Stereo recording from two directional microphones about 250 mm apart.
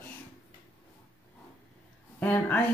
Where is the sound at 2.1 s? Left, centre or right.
Centre.